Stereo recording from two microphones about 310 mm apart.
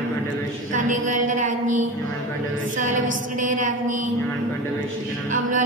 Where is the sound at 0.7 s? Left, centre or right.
Right.